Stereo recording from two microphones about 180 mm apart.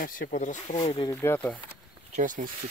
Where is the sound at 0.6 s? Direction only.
30° left (ahead or behind).